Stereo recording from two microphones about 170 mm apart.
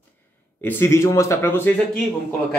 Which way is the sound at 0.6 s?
15° left (ahead or behind).